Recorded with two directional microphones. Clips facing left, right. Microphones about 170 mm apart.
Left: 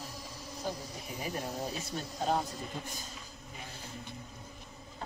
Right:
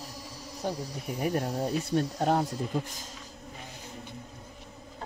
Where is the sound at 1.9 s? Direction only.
65° right (ahead or behind).